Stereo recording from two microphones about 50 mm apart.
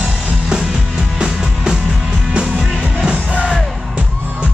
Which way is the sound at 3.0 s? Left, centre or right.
Right.